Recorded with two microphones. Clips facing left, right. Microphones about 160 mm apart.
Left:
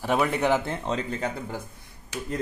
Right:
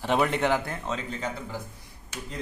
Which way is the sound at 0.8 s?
45° left (ahead or behind).